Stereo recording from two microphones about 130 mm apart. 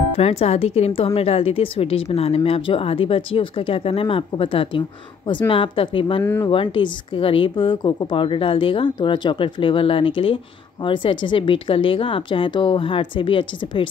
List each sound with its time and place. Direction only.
0.2 s speech: 50° left (ahead or behind)
6.2 s speech: 20° left (ahead or behind)
6.5 s a woman's voice: 40° left (ahead or behind)